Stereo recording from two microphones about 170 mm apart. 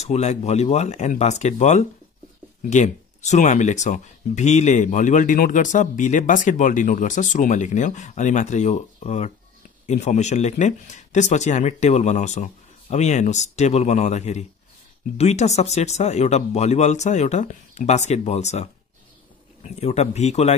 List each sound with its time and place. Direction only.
0.0 s speech: 40° left (ahead or behind)